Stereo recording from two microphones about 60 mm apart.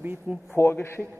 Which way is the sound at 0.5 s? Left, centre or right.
Left.